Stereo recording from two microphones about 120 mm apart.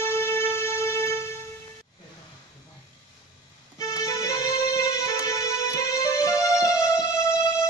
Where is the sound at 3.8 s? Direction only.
25° left (ahead or behind).